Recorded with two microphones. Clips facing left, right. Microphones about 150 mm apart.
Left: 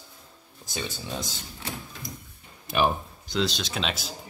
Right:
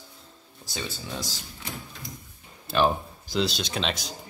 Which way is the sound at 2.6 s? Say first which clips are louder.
Right 1 dB; 10° left (ahead or behind).